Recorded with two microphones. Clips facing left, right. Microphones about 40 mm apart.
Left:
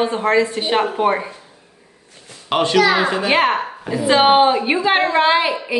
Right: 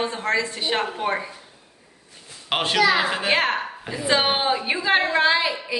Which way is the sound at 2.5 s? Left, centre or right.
Centre.